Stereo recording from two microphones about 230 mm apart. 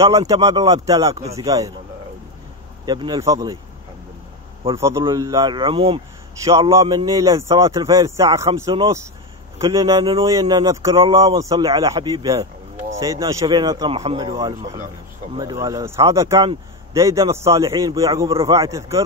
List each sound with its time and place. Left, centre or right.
0.0 s a man's voice: centre
1.1 s speech: right
1.4 s a man's voice: centre
2.8 s a man's voice: centre
4.6 s a man's voice: centre
6.4 s a man's voice: centre; by 14.9 s right
15.3 s a man's voice: centre